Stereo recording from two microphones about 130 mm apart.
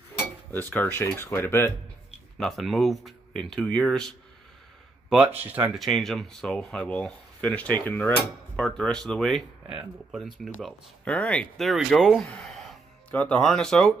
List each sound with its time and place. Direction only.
0.2 s cutlery: 15° left (ahead or behind)
2.3 s speech: centre (ahead or behind)
5.1 s speech: 10° right (ahead or behind)
5.8 s speech: centre (ahead or behind)
11.1 s speech: 10° left (ahead or behind)